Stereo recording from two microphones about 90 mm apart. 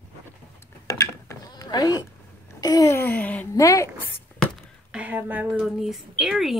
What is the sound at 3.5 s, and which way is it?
Speech, 35° left (ahead or behind).